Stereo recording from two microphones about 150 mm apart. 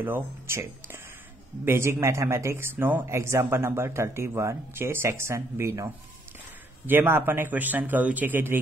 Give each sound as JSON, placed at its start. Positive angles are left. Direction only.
{"t": 0.0, "sound": "speech", "side_deg": -15}
{"t": 6.9, "sound": "speech", "side_deg": -15}